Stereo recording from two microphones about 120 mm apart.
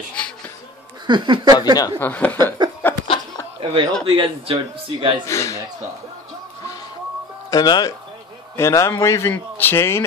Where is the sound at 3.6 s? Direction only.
45° right (ahead or behind).